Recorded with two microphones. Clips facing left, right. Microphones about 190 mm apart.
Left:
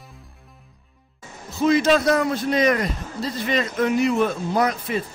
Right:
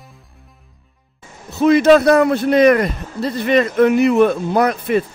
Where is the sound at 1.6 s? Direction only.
60° right (ahead or behind).